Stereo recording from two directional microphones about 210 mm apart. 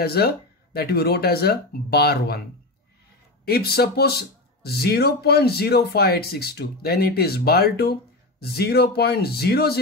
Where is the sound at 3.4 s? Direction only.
50° left (ahead or behind).